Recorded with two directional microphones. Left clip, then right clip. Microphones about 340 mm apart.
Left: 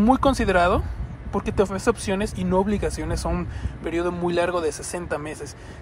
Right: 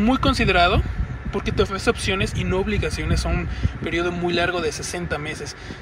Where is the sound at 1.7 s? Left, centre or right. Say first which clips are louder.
Right 1 dB; centre.